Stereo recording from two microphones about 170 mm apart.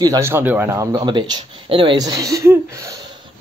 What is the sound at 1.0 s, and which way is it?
Speech, 25° right (ahead or behind).